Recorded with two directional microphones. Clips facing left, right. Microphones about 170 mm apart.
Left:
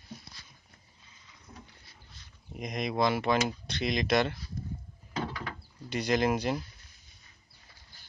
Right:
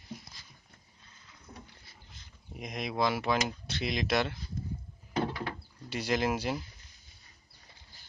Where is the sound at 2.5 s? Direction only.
5° right (ahead or behind).